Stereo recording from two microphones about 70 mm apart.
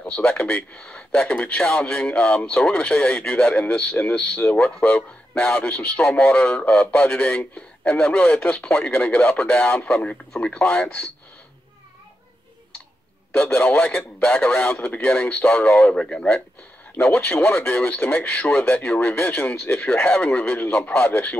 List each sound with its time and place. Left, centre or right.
0.0 s a man's voice: left
4.4 s speech: left
4.8 s a man's voice: centre
13.3 s speech: centre
16.9 s speech: left